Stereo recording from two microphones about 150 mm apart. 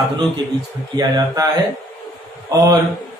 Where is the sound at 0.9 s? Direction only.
25° right (ahead or behind).